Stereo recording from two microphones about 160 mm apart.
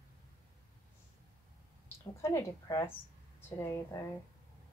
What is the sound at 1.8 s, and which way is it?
A woman's voice, 15° left (ahead or behind).